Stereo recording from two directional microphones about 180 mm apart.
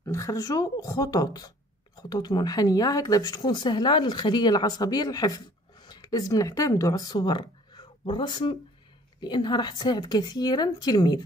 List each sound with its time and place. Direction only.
0.0 s speech: 15° left (ahead or behind)